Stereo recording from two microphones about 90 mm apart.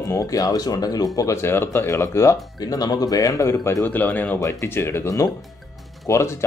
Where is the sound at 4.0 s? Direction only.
20° left (ahead or behind).